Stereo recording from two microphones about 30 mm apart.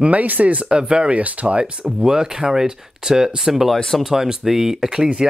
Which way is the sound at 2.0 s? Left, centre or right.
Centre.